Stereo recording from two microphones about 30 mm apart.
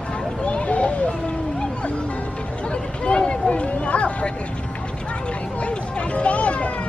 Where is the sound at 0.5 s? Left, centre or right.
Left.